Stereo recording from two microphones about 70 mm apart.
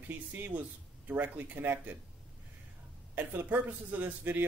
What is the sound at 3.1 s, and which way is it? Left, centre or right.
A man's voice, right.